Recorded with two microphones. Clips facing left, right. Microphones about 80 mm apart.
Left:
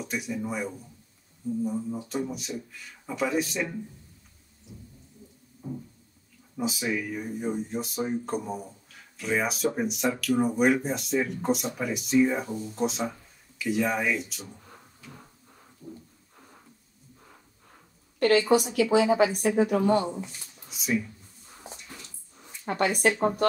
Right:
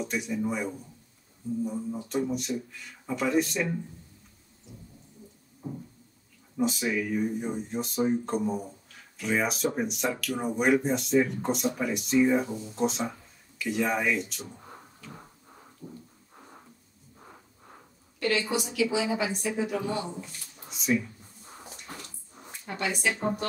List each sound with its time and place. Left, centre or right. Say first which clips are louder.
0.0 s speech: right 2 dB; centre
5.6 s a sound: left 1 dB; centre
6.5 s speech: right 2 dB; centre
15.8 s thunder: left 1 dB; right
18.2 s a woman's voice: left 7 dB; left
20.7 s speech: right 1 dB; centre
22.7 s a woman's voice: left 5 dB; left